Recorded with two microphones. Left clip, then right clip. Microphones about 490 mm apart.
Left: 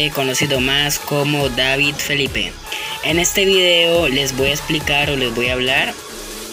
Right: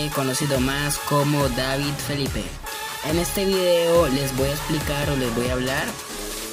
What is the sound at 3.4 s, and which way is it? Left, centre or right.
Speech, right.